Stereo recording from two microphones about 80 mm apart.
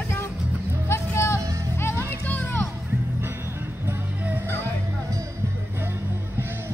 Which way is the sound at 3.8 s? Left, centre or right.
Right.